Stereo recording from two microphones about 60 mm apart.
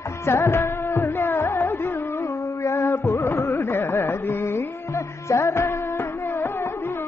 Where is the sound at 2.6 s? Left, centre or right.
Left.